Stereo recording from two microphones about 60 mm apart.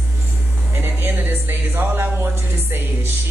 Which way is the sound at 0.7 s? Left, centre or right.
Right.